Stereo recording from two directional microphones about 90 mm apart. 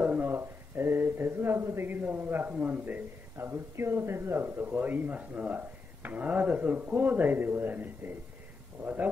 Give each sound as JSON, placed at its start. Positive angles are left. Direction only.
{"t": 0.0, "sound": "speech", "side_deg": -20}